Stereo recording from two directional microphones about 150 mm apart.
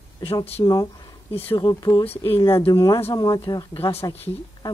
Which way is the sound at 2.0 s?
40° left (ahead or behind).